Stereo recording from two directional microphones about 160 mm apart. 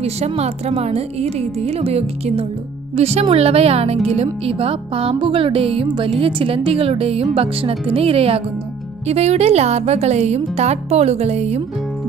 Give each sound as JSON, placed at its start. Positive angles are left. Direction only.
{"t": 0.0, "sound": "speech", "side_deg": -40}